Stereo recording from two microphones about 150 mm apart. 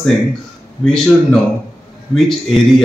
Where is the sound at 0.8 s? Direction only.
5° left (ahead or behind).